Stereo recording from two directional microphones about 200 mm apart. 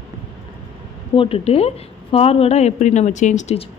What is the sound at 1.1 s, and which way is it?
A woman's voice, 30° left (ahead or behind).